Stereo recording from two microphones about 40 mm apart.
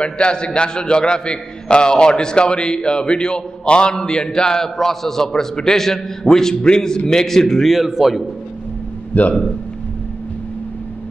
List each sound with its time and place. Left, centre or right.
0.0 s a man's voice: left
6.5 s a man's voice: left
7.1 s a man's voice: centre
7.7 s a man's voice: centre
9.1 s a man's voice: left